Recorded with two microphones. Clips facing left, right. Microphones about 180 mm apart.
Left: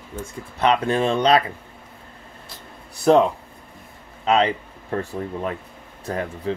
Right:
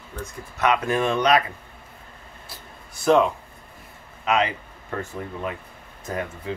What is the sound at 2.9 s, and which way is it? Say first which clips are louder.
Speech: left 3 dB; 35° left (ahead or behind).